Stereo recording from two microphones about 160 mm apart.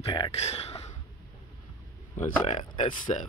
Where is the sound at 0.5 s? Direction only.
40° left (ahead or behind).